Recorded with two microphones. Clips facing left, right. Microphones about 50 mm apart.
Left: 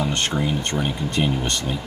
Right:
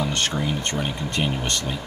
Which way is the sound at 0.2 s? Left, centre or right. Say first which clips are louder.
Left 2 dB; centre.